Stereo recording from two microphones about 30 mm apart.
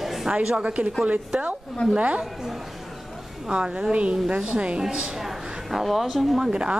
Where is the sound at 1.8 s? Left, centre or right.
Left.